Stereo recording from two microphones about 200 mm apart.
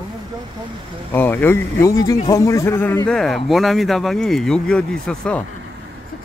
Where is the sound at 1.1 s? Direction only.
10° left (ahead or behind).